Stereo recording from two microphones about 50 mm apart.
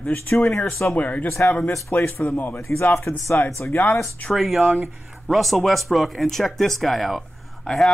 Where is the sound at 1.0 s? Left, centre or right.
Left.